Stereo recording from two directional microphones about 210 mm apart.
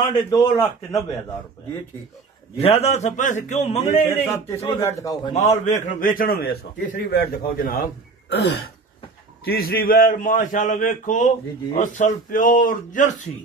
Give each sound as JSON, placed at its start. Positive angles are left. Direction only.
{"t": 0.3, "sound": "a man's voice", "side_deg": 15}
{"t": 2.5, "sound": "a man's voice", "side_deg": 30}
{"t": 4.1, "sound": "a man's voice", "side_deg": 10}
{"t": 5.3, "sound": "a man's voice", "side_deg": 35}
{"t": 8.3, "sound": "a man's voice", "side_deg": 55}